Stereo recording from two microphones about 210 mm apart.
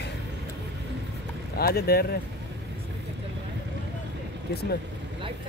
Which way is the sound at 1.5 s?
45° left (ahead or behind).